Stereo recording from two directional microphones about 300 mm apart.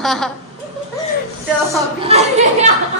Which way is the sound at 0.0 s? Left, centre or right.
Centre.